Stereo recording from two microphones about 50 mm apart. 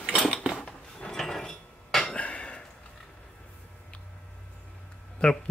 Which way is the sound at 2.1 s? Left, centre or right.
Left.